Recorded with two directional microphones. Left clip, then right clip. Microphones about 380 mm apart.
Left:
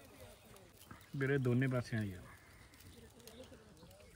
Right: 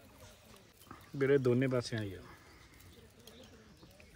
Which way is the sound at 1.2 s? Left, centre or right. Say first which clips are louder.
Right 7 dB; centre.